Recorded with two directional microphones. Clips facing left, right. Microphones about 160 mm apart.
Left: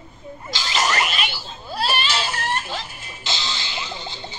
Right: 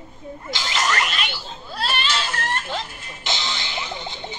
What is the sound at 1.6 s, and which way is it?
Baby cry, 10° left (ahead or behind).